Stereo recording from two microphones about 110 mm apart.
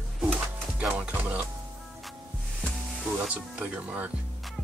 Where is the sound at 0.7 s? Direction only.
10° right (ahead or behind).